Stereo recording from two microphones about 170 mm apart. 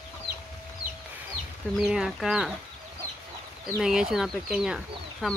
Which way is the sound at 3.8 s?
5° right (ahead or behind).